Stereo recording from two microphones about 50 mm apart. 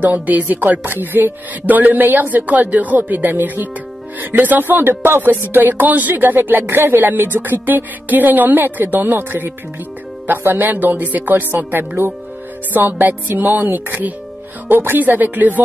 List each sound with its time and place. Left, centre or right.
0.0 s speech: right
12.7 s speech: right